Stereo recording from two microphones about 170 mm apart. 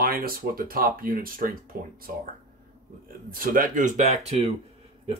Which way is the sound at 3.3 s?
55° right (ahead or behind).